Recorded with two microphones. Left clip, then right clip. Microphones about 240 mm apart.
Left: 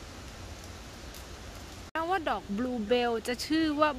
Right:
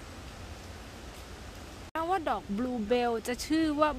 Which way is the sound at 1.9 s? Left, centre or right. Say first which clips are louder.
Even; centre.